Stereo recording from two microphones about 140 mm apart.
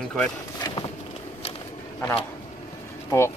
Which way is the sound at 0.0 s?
5° left (ahead or behind).